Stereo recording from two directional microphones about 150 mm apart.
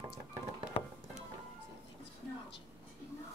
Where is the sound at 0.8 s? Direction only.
35° left (ahead or behind).